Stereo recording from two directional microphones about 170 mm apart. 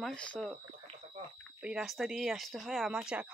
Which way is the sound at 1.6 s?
5° right (ahead or behind).